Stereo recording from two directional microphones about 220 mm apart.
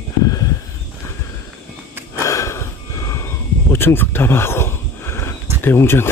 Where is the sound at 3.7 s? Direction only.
10° left (ahead or behind).